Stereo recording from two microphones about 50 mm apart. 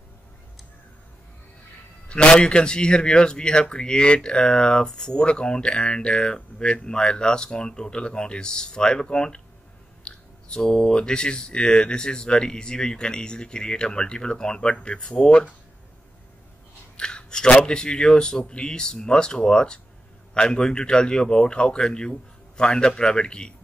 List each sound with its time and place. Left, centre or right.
2.0 s speech: centre
16.9 s speech: centre